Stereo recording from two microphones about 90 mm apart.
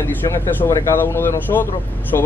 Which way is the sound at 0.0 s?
25° left (ahead or behind).